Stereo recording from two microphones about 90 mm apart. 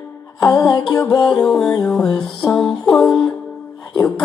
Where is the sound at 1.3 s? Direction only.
5° left (ahead or behind).